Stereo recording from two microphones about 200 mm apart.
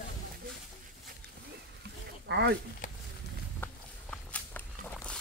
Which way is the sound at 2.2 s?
60° right (ahead or behind).